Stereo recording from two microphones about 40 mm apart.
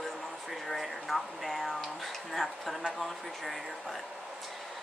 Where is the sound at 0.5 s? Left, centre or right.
Centre.